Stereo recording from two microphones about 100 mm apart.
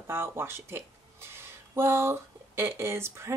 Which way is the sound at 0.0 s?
25° right (ahead or behind).